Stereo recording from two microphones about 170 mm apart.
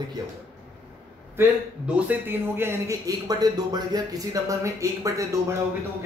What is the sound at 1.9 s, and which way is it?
A man's voice, 10° right (ahead or behind).